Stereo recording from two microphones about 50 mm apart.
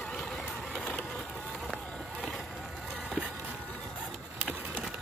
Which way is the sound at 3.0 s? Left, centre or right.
Right.